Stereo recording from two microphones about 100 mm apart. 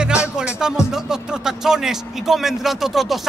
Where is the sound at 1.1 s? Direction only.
5° right (ahead or behind).